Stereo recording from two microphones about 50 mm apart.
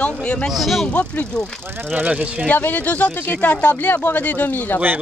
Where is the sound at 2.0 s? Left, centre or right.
Right.